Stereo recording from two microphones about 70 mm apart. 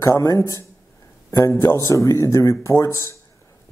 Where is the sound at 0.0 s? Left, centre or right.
Left.